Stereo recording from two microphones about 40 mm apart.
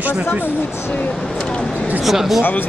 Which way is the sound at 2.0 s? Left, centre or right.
Centre.